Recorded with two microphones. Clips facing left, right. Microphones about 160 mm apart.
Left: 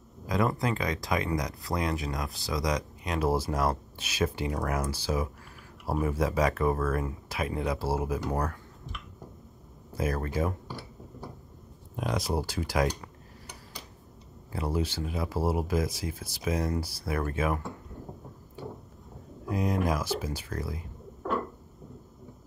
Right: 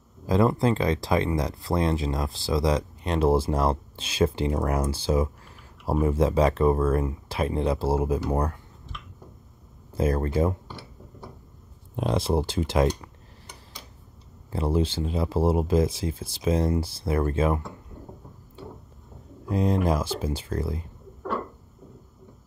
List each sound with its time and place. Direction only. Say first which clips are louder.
0.3 s speech: right 6 dB; 30° right (ahead or behind)
9.9 s speech: right 6 dB; 30° right (ahead or behind)
12.0 s speech: right 6 dB; 25° right (ahead or behind)
14.5 s speech: right 6 dB; 25° right (ahead or behind)
19.5 s speech: right 5 dB; 30° right (ahead or behind)